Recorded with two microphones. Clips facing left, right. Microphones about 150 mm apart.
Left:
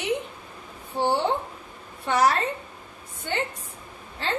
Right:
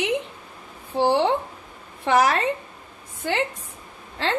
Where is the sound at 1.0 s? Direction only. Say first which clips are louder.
Right 4 dB; 90° right.